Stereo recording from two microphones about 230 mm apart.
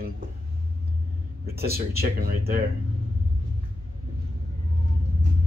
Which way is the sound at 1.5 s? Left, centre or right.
Right.